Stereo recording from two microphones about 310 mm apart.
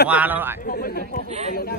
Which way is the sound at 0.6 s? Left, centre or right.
Left.